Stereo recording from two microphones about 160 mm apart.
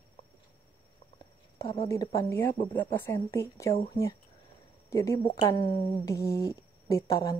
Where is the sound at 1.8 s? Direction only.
20° left (ahead or behind).